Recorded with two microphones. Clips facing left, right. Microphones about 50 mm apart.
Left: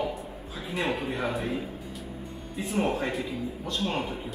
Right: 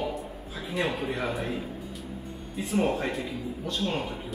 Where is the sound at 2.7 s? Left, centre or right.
Centre.